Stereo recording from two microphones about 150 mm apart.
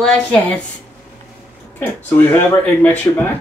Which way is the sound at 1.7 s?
15° left (ahead or behind).